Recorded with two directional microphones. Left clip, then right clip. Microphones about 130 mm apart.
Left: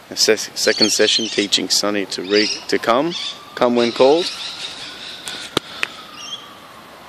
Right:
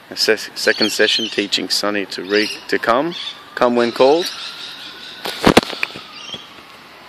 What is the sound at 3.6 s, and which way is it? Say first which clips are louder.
Speech: right 1 dB; 20° right (ahead or behind).